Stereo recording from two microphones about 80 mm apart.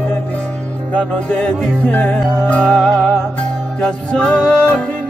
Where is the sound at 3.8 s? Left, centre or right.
Centre.